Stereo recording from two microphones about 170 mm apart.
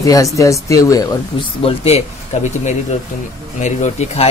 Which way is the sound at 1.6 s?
35° left (ahead or behind).